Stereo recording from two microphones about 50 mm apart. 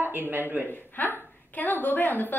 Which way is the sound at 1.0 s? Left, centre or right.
Left.